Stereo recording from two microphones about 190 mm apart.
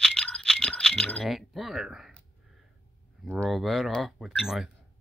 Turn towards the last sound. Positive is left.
turn(degrees=0)  # may be behind; listen again after turning